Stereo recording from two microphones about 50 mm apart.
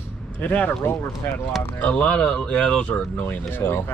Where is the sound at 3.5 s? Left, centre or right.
Left.